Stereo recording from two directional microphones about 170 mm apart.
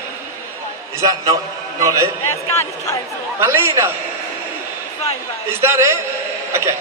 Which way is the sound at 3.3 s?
15° right (ahead or behind).